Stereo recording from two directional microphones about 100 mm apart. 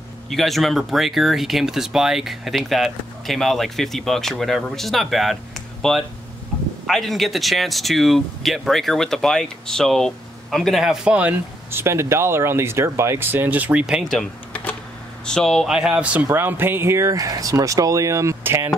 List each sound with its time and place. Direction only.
0.3 s speech: centre (ahead or behind); by 11.8 s 15° right (ahead or behind)
11.8 s speech: 25° right (ahead or behind)
14.1 s typing: 15° left (ahead or behind)
15.2 s speech: 5° left (ahead or behind)
15.7 s speech: 10° right (ahead or behind); by 18.7 s 25° right (ahead or behind)